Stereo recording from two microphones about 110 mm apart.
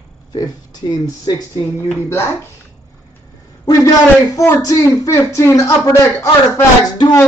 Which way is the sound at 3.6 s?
35° left (ahead or behind).